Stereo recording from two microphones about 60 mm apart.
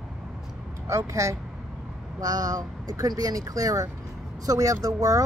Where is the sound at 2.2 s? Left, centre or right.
Right.